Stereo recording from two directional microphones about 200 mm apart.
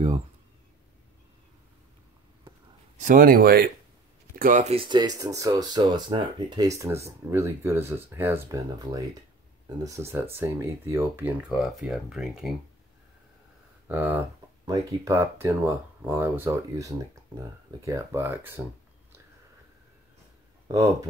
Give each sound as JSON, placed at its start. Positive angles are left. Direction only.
{"t": 3.0, "sound": "speech", "side_deg": -40}
{"t": 13.8, "sound": "speech", "side_deg": -10}
{"t": 20.6, "sound": "speech", "side_deg": -15}